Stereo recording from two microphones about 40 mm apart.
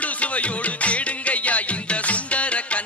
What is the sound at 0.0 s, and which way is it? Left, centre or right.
Music, left.